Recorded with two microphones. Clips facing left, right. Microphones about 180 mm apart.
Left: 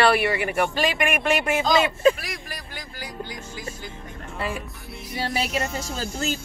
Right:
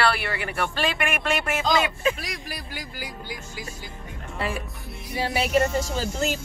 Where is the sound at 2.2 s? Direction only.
Centre (ahead or behind).